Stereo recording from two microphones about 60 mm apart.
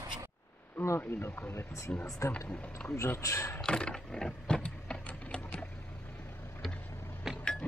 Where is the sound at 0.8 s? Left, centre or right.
Left.